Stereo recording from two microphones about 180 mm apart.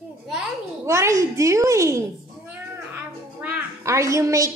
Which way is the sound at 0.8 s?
15° right (ahead or behind).